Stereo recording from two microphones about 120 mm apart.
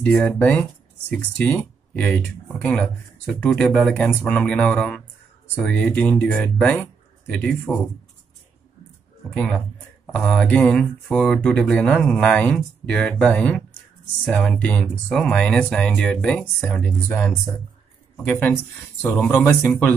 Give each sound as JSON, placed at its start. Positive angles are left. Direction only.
{"t": 0.0, "sound": "speech", "side_deg": 15}
{"t": 3.9, "sound": "speech", "side_deg": 15}
{"t": 9.3, "sound": "speech", "side_deg": 5}
{"t": 18.2, "sound": "speech", "side_deg": 15}